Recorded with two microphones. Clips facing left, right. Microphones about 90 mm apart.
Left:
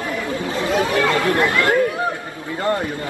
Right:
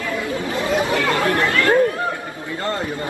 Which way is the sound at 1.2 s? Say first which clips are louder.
Left 1 dB; 20° left (ahead or behind).